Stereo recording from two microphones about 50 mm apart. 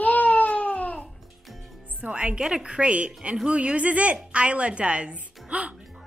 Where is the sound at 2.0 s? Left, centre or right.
Right.